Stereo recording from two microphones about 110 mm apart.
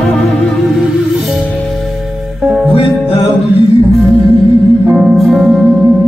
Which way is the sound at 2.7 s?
60° left (ahead or behind).